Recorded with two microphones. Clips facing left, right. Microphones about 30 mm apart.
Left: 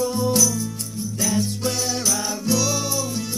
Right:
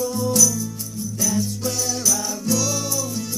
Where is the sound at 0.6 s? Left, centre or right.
Left.